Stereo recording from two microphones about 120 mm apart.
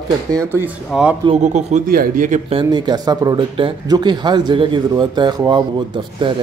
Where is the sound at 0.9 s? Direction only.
5° right (ahead or behind).